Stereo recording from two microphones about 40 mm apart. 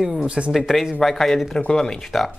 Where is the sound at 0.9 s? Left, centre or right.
Centre.